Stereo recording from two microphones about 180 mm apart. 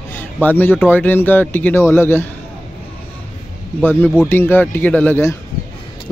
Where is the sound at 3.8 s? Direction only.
10° left (ahead or behind).